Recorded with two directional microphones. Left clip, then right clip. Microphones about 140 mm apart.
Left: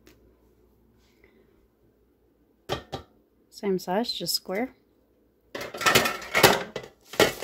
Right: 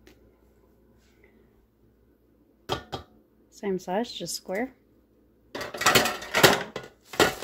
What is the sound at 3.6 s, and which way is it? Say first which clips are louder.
Speech: left 2 dB; 20° left (ahead or behind).